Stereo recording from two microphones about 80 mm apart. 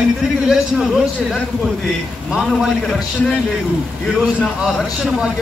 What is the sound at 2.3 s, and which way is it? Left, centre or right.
Speech, centre.